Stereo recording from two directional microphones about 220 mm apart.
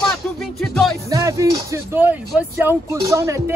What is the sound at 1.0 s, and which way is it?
Speech, 15° right (ahead or behind).